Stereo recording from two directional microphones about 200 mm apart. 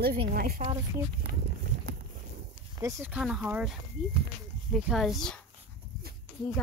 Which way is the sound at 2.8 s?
10° right (ahead or behind).